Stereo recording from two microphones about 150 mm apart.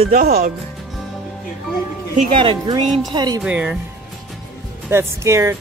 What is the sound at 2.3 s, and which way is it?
Speech, 35° right (ahead or behind).